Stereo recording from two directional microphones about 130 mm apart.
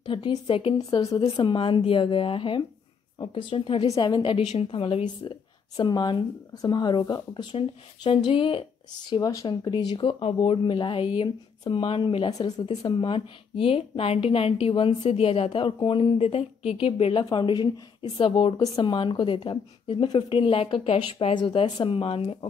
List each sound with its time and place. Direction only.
0.0 s a sound: 40° left (ahead or behind)
0.7 s speech: 30° left (ahead or behind)
4.5 s a woman's voice: 50° left (ahead or behind); by 12.6 s 30° left (ahead or behind)
12.6 s a woman's voice: 45° left (ahead or behind)
17.2 s a woman's voice: 30° left (ahead or behind)